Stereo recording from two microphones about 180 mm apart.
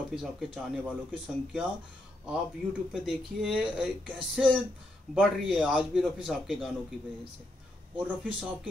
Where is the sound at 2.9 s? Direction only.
Centre (ahead or behind).